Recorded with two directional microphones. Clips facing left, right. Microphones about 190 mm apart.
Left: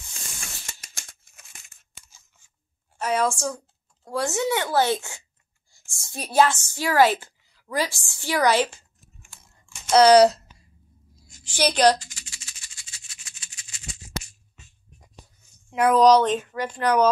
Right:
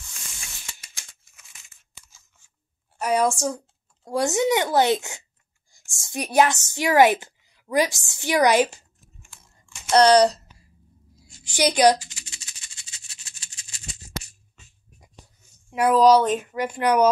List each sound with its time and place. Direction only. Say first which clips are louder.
0.3 s tearing: left 4 dB; 50° left (ahead or behind)
3.0 s a woman's voice: right 2 dB; 15° right (ahead or behind)
9.8 s speech: left 2 dB; centre (ahead or behind)
11.4 s maraca: right 1 dB; 15° right (ahead or behind); by 13.8 s 30° right (ahead or behind)
15.7 s speech: even; 5° right (ahead or behind)